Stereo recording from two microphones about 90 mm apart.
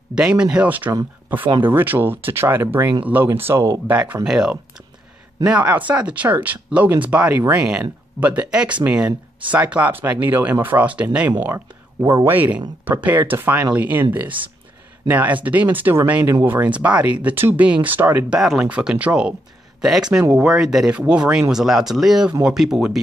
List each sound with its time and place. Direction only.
0.1 s speech: 10° right (ahead or behind); by 3.8 s 35° right (ahead or behind)
3.8 s speech: 15° right (ahead or behind)
11.5 s speech: 35° right (ahead or behind)
12.3 s speech: 20° right (ahead or behind)
15.0 s speech: 20° right (ahead or behind)
18.4 s speech: 5° right (ahead or behind)